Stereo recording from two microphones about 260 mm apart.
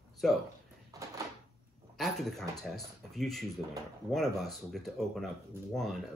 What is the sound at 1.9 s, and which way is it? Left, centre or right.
Speech, centre.